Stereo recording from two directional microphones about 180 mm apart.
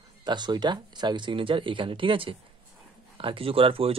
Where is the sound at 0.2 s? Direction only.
25° right (ahead or behind).